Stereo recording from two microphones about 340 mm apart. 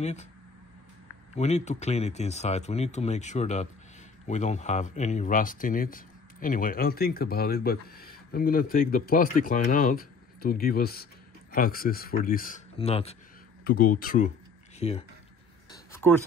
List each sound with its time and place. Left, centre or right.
0.0 s speech: centre
1.3 s speech: centre
15.7 s a sound: centre